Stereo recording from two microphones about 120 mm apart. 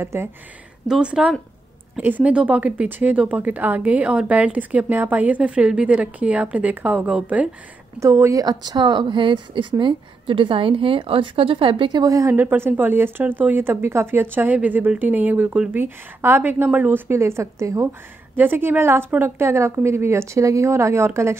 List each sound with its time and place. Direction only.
0.0 s a woman's voice: 20° right (ahead or behind)
0.8 s a woman's voice: 5° right (ahead or behind)
8.0 s speech: 25° right (ahead or behind)
12.4 s a woman's voice: 20° right (ahead or behind)